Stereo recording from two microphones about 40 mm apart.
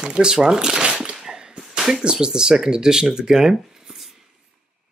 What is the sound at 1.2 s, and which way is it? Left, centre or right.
Whip, centre.